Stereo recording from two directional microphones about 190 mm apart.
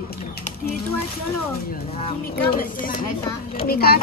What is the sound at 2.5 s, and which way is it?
Speech, 45° left (ahead or behind).